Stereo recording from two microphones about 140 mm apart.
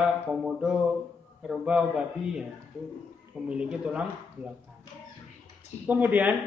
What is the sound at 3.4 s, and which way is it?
Speech, 5° right (ahead or behind).